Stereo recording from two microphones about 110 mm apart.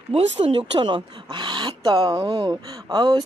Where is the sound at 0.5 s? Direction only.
45° right (ahead or behind).